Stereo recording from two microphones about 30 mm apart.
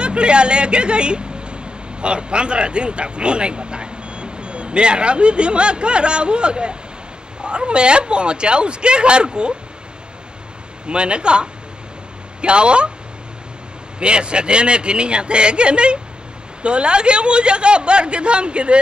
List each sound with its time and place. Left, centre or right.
0.0 s speech: right
10.9 s speech: right
13.9 s speech: right